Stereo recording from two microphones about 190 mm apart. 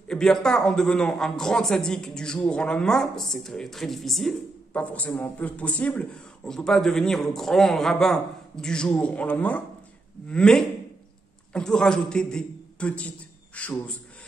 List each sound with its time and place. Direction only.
0.1 s a man's voice: 5° left (ahead or behind)